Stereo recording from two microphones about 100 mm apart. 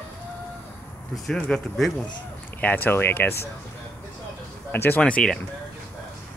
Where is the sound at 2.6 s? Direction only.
20° left (ahead or behind).